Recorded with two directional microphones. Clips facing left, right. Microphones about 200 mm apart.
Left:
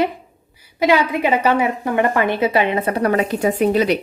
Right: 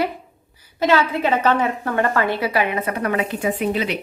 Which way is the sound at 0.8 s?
15° left (ahead or behind).